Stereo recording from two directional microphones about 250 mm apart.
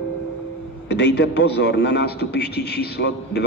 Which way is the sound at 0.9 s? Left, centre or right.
Left.